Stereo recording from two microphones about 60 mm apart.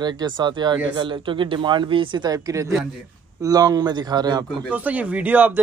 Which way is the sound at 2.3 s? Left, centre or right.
Right.